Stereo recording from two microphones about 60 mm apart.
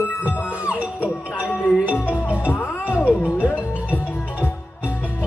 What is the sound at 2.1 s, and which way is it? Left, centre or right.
Music, left.